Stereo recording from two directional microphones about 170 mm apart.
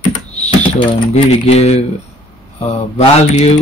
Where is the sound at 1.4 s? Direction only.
40° left (ahead or behind).